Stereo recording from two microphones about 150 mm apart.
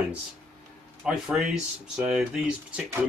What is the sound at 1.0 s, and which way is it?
Speech, 5° right (ahead or behind).